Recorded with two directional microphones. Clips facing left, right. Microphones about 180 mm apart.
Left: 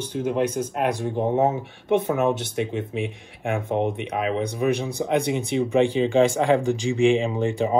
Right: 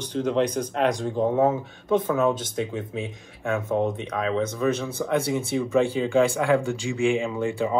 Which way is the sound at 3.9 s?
15° left (ahead or behind).